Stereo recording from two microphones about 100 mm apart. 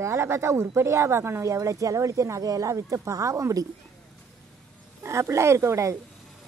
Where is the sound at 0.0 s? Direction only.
30° right (ahead or behind).